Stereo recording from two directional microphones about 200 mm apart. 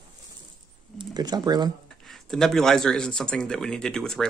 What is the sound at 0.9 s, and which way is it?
Speech, 20° right (ahead or behind).